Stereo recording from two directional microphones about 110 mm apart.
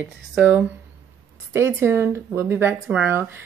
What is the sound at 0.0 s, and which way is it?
Speech, 15° right (ahead or behind).